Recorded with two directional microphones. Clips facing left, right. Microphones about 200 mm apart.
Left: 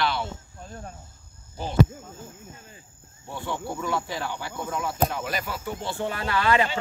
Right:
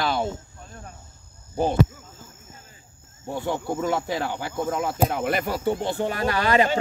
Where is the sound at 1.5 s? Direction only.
55° right (ahead or behind).